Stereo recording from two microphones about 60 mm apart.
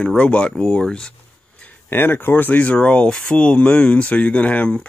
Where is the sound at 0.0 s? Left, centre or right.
Centre.